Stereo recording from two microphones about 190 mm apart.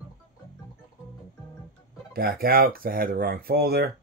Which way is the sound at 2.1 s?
50° right (ahead or behind).